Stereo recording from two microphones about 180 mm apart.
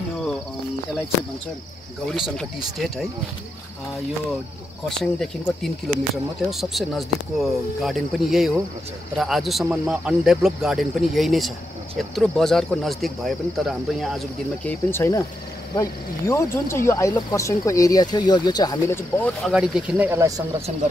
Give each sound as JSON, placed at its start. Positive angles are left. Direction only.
{"t": 2.1, "sound": "speech", "side_deg": 0}
{"t": 4.8, "sound": "speech", "side_deg": 5}
{"t": 19.4, "sound": "speech", "side_deg": -5}